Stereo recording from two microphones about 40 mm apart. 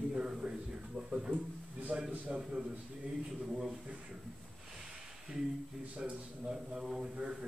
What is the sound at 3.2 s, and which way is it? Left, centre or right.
Speech, centre.